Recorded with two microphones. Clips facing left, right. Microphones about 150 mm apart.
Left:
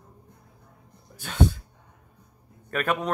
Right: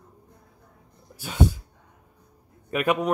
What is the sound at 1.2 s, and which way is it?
Speech, 10° right (ahead or behind).